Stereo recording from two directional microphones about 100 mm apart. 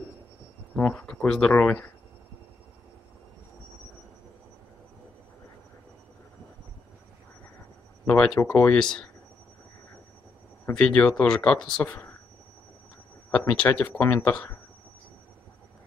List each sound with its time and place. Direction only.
0.7 s speech: 10° left (ahead or behind)
8.0 s speech: 10° left (ahead or behind)
10.7 s speech: 10° left (ahead or behind)
13.3 s speech: 15° left (ahead or behind)